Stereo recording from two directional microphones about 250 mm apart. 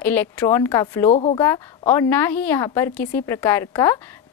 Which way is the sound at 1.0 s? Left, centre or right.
Left.